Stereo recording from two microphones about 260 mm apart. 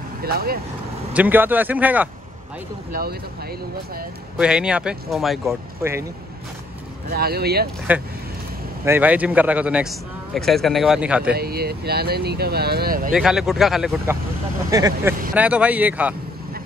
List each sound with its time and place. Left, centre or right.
0.2 s speech: right
1.1 s speech: centre
2.9 s speech: right
4.4 s a man's voice: centre
7.1 s speech: right
8.8 s a man's voice: centre
11.3 s speech: right
13.1 s a man's voice: centre
14.7 s a man's voice: centre